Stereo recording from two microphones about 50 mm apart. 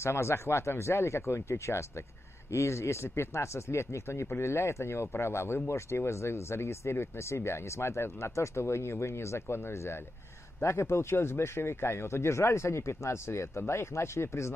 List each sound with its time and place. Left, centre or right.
0.0 s speech: left